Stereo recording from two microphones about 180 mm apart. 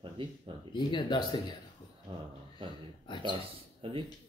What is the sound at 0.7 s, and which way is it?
Speech, 25° left (ahead or behind).